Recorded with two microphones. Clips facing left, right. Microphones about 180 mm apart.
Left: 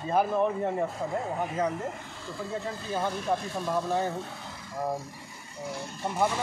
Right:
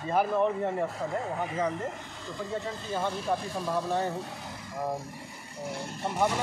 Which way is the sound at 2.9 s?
5° left (ahead or behind).